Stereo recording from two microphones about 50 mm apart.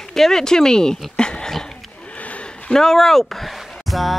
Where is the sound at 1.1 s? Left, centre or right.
Centre.